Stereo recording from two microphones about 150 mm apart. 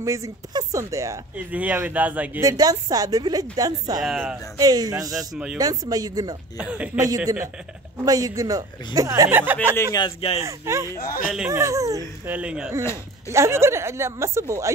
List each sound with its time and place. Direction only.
0.0 s speech: 20° right (ahead or behind)
1.5 s speech: 10° right (ahead or behind)
2.4 s speech: 25° right (ahead or behind)
5.1 s speech: 5° right (ahead or behind)
5.6 s speech: 25° right (ahead or behind)
9.3 s speech: 15° right (ahead or behind)
9.9 s speech: 35° left (ahead or behind)
10.4 s speech: 20° right (ahead or behind)
11.0 s speech: 70° left (ahead or behind)
11.3 s speech: 15° right (ahead or behind)
12.3 s speech: 10° right (ahead or behind)
13.3 s speech: 20° right (ahead or behind)